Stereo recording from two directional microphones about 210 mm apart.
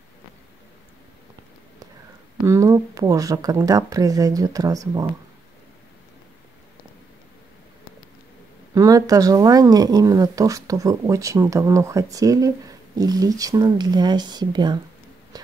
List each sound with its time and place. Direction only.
2.4 s speech: 15° right (ahead or behind)
8.7 s speech: 15° right (ahead or behind)
15.3 s a sound: 20° right (ahead or behind)